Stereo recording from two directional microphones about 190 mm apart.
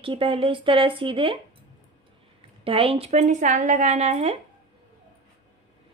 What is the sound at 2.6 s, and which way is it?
Speech, 30° right (ahead or behind).